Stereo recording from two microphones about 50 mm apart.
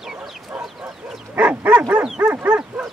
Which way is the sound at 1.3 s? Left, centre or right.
Right.